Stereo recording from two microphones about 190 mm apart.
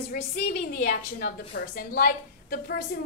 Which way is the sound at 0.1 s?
55° left (ahead or behind).